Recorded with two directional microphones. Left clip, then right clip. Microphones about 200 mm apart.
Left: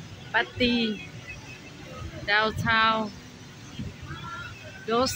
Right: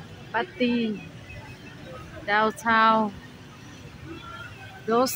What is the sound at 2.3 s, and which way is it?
Speech, 20° right (ahead or behind).